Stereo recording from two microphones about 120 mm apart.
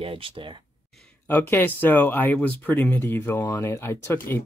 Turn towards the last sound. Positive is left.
turn(degrees=20)  # may be behind; listen again after turning